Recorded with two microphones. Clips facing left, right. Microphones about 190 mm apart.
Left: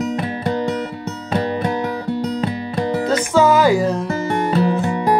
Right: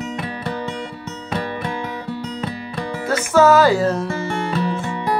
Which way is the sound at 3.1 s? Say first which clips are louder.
Right 2 dB; 15° left (ahead or behind).